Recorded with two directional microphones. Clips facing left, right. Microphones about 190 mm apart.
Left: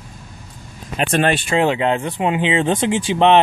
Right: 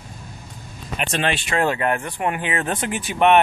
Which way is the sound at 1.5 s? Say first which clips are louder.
Left 4 dB; 20° left (ahead or behind).